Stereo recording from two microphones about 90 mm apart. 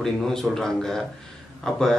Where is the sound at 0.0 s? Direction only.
5° left (ahead or behind).